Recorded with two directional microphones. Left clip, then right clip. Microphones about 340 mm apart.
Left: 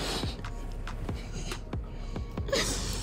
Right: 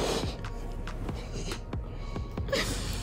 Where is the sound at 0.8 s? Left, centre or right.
Centre.